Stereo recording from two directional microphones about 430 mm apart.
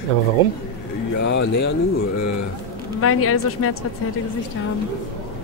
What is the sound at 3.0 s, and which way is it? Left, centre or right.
Speech, left.